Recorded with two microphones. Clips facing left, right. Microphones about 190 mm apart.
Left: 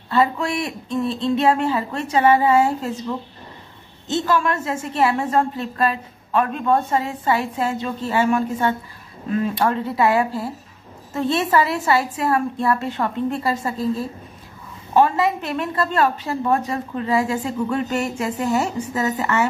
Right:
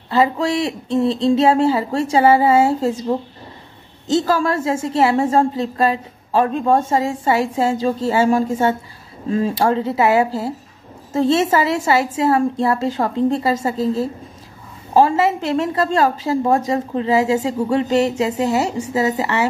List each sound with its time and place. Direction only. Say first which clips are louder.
0.1 s a woman's voice: right 3 dB; 25° right (ahead or behind)